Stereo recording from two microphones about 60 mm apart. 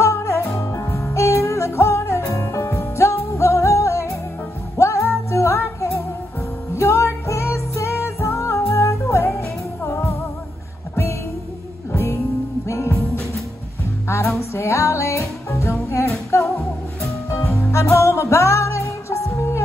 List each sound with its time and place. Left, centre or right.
0.0 s music: left
11.9 s music: left
14.0 s music: left